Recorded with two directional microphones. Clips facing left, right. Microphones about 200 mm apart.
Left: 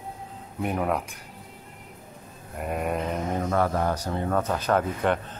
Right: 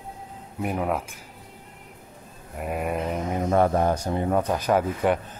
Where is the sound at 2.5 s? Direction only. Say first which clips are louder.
Even; 5° right (ahead or behind).